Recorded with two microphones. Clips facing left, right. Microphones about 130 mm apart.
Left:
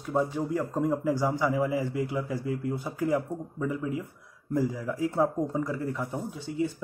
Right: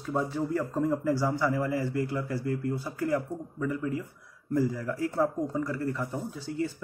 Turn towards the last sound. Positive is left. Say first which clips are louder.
# left 2 dB
turn(degrees=15)  # may be behind; listen again after turning